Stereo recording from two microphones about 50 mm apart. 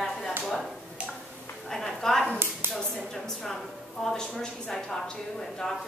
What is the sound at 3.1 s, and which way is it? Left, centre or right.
A woman's voice, centre.